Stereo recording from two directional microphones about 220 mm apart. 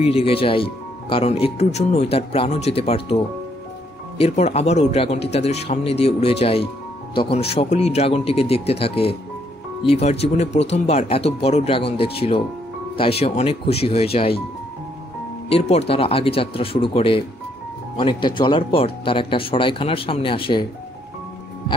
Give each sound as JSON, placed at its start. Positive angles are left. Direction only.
{"t": 0.0, "sound": "speech", "side_deg": 25}
{"t": 4.2, "sound": "speech", "side_deg": 30}
{"t": 15.5, "sound": "speech", "side_deg": 25}